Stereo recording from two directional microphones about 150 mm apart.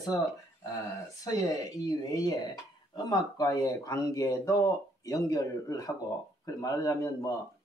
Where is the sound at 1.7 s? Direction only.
25° left (ahead or behind).